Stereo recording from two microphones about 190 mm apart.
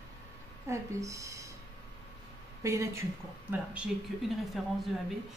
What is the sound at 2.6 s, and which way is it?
Speech, 15° right (ahead or behind).